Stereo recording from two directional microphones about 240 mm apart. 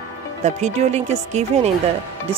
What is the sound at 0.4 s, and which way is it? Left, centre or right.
Speech, right.